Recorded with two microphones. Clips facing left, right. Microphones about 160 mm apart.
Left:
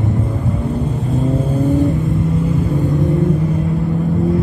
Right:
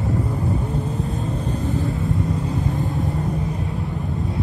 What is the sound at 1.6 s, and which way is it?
Vehicle, 20° left (ahead or behind).